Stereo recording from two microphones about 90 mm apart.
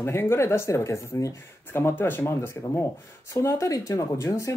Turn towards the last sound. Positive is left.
turn(degrees=35)  # may be behind; listen again after turning